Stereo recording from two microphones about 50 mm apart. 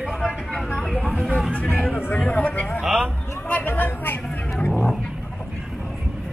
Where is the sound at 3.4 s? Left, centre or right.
Left.